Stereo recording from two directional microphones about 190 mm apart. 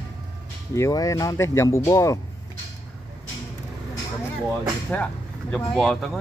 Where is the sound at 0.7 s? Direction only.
15° left (ahead or behind).